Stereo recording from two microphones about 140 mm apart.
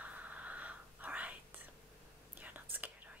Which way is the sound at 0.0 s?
10° right (ahead or behind).